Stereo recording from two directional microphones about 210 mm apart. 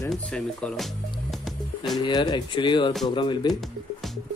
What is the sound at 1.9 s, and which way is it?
Speech, 20° left (ahead or behind).